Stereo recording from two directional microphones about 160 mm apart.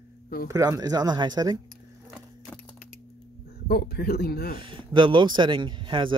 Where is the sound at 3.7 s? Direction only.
80° left.